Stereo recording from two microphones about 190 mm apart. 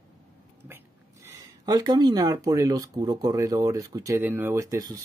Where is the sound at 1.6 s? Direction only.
20° right (ahead or behind).